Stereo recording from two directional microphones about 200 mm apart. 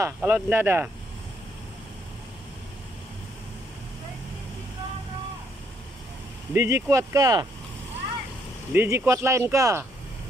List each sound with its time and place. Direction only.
0.0 s speech: 10° right (ahead or behind)
6.5 s speech: 15° right (ahead or behind)
8.7 s speech: 15° right (ahead or behind)